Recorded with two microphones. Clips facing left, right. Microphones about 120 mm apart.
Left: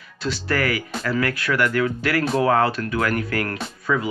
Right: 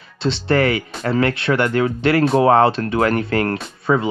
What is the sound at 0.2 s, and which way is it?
Speech, 25° right (ahead or behind).